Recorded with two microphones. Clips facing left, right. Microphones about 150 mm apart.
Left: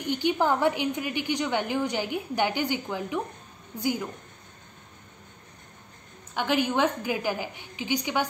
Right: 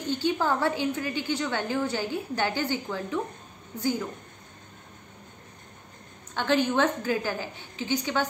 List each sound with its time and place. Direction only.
0.0 s a woman's voice: 15° left (ahead or behind)
6.3 s a woman's voice: 15° left (ahead or behind)